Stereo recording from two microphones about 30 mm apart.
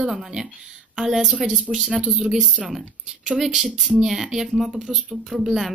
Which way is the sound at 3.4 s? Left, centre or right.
Centre.